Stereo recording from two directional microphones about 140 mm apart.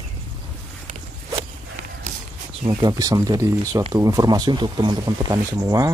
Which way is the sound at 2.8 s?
25° right (ahead or behind).